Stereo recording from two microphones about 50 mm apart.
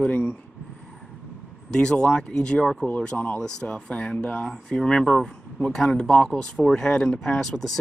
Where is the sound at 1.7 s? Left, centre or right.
Centre.